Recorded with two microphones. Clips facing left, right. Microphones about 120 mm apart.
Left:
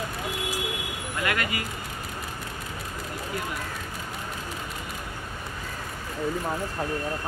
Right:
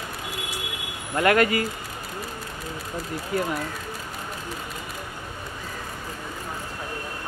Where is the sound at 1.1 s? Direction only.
45° right (ahead or behind).